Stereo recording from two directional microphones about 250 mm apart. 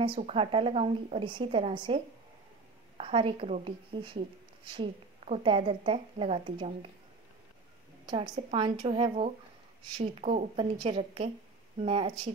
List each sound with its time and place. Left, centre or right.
0.0 s speech: right
3.0 s speech: right
8.1 s speech: right